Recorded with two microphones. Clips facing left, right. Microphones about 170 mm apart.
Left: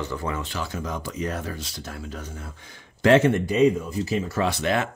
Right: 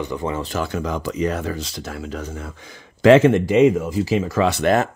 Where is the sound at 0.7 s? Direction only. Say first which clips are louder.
Right 7 dB; 80° right.